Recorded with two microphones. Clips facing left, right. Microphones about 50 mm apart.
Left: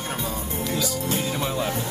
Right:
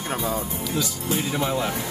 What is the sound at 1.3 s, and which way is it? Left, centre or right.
Speech, right.